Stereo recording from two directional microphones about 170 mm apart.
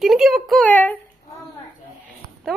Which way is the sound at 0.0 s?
Centre (ahead or behind).